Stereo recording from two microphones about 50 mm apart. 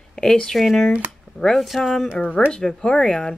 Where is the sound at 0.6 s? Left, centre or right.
Centre.